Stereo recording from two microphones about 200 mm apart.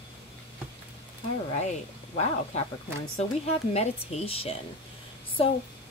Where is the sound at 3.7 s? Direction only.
30° left (ahead or behind).